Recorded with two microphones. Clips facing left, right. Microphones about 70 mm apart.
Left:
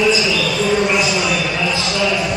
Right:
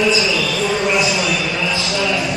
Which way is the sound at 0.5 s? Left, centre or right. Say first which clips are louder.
Left 3 dB; centre.